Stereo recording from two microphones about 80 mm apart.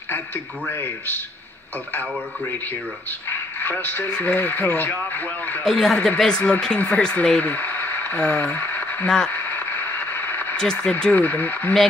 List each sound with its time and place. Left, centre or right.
0.7 s speech: left
3.1 s speech: left
5.7 s a man's voice: centre; by 8.3 s left
8.5 s a sound: centre
9.3 s radio: left
10.5 s speech: centre